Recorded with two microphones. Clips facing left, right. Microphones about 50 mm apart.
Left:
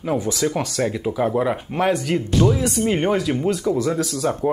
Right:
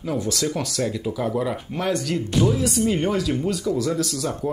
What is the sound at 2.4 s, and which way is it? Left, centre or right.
Speech, centre.